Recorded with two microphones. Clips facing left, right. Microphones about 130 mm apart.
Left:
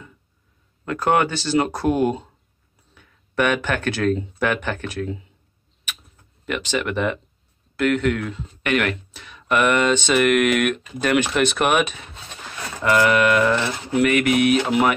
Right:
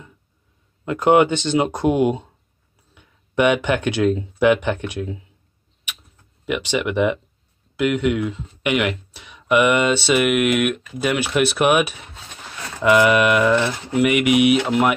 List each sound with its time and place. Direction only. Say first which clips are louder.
0.8 s speech: right 5 dB; 20° right (ahead or behind)
2.9 s a sound: right 1 dB; 15° right (ahead or behind)
4.4 s speech: right 6 dB; 15° right (ahead or behind)
6.4 s speech: right 2 dB; 10° right (ahead or behind)